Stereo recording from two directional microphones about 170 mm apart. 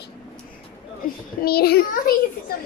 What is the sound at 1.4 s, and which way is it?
Speech, 65° left (ahead or behind).